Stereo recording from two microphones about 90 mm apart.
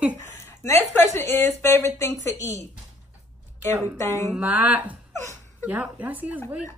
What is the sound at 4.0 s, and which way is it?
Speech, 30° left (ahead or behind).